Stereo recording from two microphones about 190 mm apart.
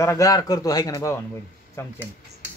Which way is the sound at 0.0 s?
15° left (ahead or behind).